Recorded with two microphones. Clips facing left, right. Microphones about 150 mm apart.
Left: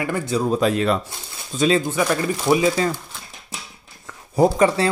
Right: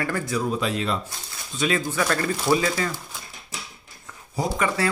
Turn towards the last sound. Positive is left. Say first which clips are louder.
# left 4 dB
turn(degrees=25)  # may be behind; listen again after turning